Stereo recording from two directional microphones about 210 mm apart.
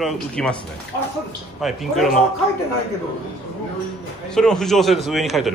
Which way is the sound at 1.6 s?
Centre (ahead or behind).